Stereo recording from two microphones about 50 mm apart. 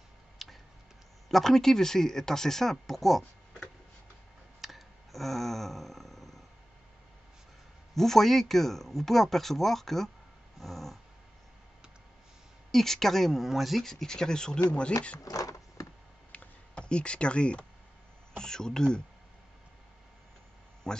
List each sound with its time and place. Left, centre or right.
0.4 s tick-tock: centre
1.3 s speech: centre
4.6 s a sound: centre
7.9 s speech: centre
10.6 s dog: centre
12.7 s speech: centre
13.8 s speech: centre
16.3 s a sound: left
18.4 s speech: centre
20.9 s speech: centre